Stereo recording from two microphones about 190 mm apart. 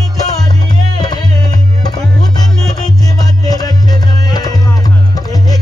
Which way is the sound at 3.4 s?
20° left (ahead or behind).